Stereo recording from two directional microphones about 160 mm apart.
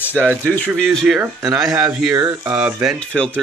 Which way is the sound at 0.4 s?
10° left (ahead or behind).